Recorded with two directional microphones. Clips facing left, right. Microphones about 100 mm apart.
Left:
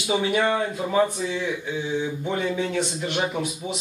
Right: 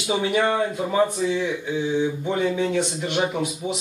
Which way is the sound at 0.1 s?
15° right (ahead or behind).